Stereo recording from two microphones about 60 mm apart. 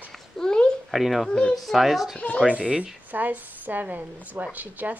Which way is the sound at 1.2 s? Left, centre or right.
Centre.